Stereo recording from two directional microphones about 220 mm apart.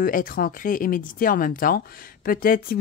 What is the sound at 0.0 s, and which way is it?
Speech, 40° left (ahead or behind).